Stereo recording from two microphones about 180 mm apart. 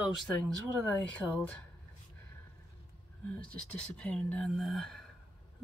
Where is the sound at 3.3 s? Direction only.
5° left (ahead or behind).